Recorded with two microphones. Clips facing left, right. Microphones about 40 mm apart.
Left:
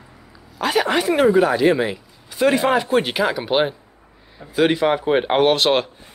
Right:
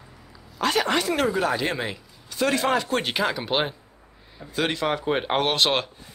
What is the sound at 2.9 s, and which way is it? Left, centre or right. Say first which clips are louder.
A man's voice: left 6 dB; centre.